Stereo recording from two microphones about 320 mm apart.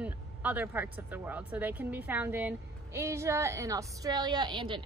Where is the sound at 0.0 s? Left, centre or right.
Centre.